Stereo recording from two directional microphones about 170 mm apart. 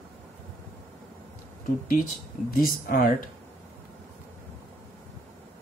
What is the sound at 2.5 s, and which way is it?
Speech, 55° left (ahead or behind).